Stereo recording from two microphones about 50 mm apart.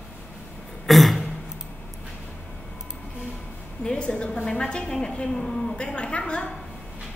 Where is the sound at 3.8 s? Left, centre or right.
Centre.